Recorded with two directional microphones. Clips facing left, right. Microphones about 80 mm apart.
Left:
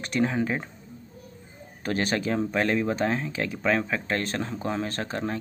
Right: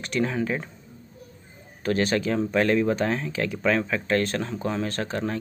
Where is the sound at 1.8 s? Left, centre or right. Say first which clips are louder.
Right 3 dB; left.